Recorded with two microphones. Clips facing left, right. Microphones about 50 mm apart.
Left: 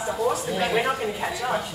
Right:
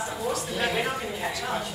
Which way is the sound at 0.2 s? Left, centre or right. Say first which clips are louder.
Left 7 dB; centre.